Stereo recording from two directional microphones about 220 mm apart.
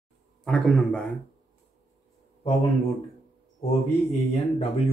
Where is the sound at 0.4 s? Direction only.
Centre (ahead or behind).